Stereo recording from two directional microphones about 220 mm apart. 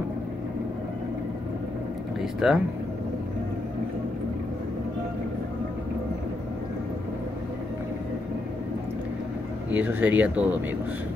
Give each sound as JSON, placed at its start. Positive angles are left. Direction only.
{"t": 2.4, "sound": "speech", "side_deg": -5}
{"t": 9.7, "sound": "speech", "side_deg": -10}